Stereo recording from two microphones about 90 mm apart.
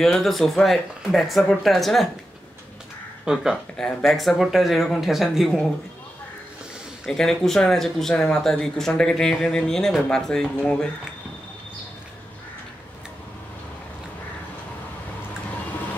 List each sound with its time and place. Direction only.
0.0 s speech: 5° left (ahead or behind)
3.3 s speech: 10° right (ahead or behind)
3.7 s speech: 5° left (ahead or behind)
7.1 s speech: 5° left (ahead or behind)